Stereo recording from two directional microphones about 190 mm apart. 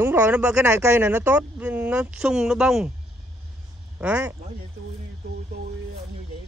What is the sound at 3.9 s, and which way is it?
Speech, 10° right (ahead or behind).